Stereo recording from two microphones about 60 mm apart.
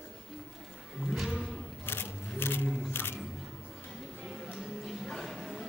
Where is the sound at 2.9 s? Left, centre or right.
Left.